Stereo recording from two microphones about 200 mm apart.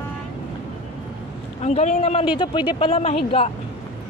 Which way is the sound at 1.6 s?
35° left (ahead or behind).